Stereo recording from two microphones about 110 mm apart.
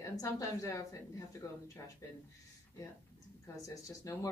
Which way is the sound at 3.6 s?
30° left (ahead or behind).